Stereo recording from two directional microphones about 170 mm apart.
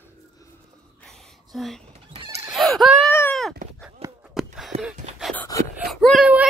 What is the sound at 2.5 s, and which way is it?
Baby cry, centre (ahead or behind).